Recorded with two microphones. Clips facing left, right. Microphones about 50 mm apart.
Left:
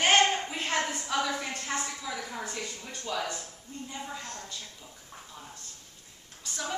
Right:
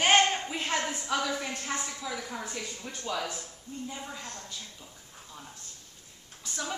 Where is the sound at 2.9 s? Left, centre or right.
Centre.